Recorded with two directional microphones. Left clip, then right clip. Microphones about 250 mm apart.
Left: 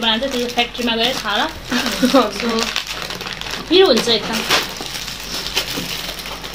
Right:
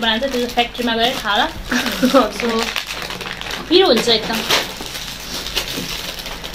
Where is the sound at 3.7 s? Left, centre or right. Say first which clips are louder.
Even; centre.